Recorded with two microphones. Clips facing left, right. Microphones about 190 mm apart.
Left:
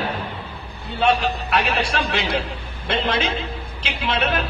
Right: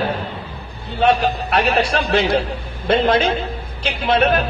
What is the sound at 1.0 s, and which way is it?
Speech, 40° right (ahead or behind).